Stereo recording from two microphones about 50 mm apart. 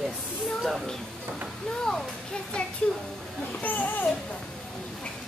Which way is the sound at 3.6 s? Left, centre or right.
Left.